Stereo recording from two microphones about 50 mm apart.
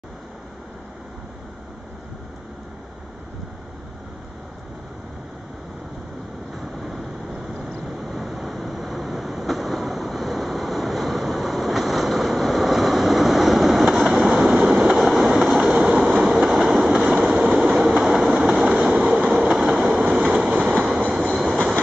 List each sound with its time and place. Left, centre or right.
8.0 s train: centre